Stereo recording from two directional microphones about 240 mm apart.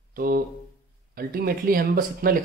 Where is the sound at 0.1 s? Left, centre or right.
Right.